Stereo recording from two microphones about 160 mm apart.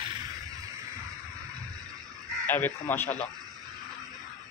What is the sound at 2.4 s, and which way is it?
Speech, 10° left (ahead or behind).